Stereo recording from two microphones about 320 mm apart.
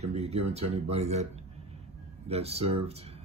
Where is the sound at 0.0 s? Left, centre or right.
Centre.